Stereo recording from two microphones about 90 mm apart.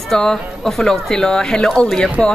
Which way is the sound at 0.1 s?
5° left (ahead or behind).